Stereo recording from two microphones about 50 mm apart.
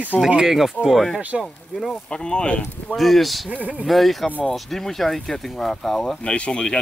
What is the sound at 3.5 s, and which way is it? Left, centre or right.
Speech, right.